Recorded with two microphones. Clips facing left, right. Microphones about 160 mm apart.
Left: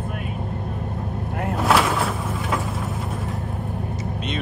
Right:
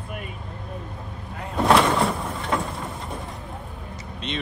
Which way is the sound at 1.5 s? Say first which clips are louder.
Right 2 dB; centre (ahead or behind).